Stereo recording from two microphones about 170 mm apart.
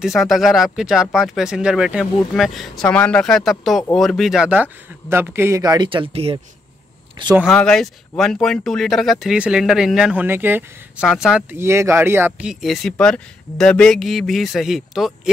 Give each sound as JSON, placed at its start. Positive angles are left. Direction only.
{"t": 0.0, "sound": "speech", "side_deg": 0}
{"t": 7.5, "sound": "speech", "side_deg": 5}
{"t": 11.5, "sound": "speech", "side_deg": -15}